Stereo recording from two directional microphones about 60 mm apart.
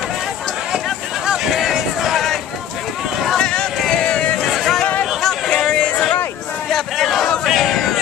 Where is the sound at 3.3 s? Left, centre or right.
Centre.